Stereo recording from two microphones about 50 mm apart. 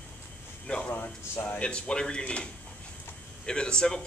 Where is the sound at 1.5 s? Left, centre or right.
Left.